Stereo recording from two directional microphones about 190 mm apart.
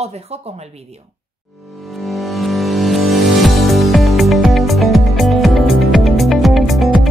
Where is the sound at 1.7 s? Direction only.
Centre (ahead or behind).